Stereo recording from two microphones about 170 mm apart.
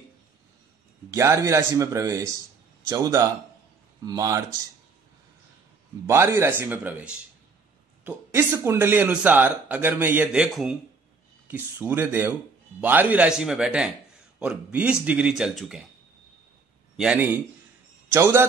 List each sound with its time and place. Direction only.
1.1 s speech: 15° right (ahead or behind)
6.0 s a man's voice: 15° right (ahead or behind)
16.9 s a man's voice: 5° right (ahead or behind)